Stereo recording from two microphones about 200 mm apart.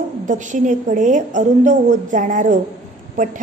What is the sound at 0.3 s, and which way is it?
A woman's voice, 40° right (ahead or behind).